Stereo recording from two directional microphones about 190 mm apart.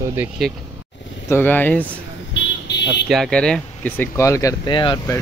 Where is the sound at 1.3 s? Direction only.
10° left (ahead or behind).